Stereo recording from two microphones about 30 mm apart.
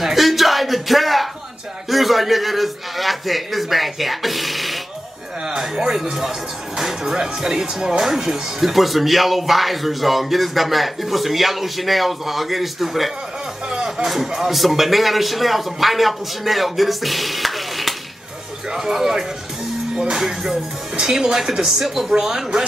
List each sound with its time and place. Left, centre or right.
0.0 s a sound: centre
1.9 s speech: centre
5.6 s speech: centre
18.7 s speech: centre